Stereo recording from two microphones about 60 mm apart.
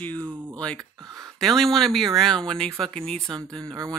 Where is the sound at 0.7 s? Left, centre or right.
Right.